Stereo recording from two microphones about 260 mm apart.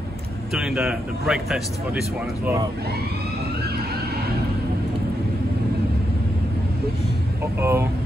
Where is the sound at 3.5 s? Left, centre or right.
Right.